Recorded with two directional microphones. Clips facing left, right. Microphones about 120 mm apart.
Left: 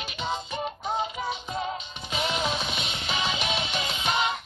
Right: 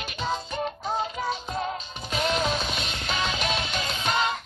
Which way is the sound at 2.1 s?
15° left (ahead or behind).